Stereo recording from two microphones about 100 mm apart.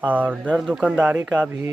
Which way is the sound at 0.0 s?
15° right (ahead or behind).